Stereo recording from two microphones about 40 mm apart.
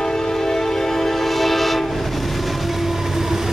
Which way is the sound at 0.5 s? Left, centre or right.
Centre.